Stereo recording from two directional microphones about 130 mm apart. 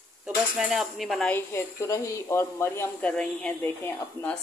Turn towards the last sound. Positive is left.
turn(degrees=15)  # may be behind; listen again after turning